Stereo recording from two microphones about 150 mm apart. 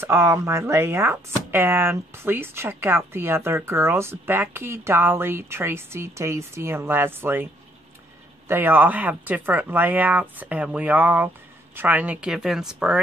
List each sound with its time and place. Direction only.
0.0 s speech: 15° right (ahead or behind)
8.5 s speech: 15° right (ahead or behind)